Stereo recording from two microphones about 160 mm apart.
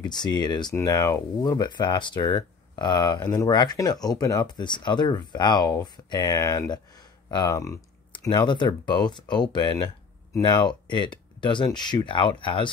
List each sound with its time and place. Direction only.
0.0 s speech: 25° left (ahead or behind)